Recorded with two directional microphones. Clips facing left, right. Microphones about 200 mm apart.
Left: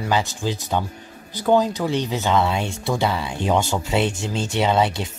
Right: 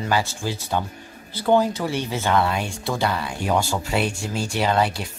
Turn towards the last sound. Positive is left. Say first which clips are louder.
# left 2 dB
turn(degrees=25)  # may be behind; listen again after turning